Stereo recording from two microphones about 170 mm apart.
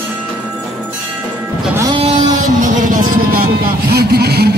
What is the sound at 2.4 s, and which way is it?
Vehicle, 50° right (ahead or behind).